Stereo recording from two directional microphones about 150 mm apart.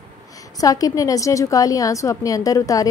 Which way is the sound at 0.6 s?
25° left (ahead or behind).